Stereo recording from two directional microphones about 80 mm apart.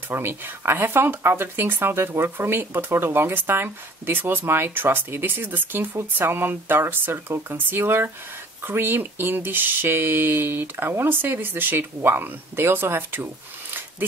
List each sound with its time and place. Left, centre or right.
0.1 s speech: right